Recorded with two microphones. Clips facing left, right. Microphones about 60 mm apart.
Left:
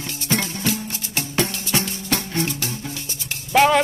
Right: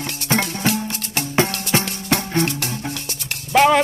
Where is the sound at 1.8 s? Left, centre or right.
Right.